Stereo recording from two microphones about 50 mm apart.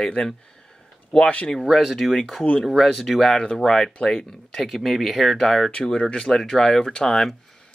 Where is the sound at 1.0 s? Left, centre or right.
Left.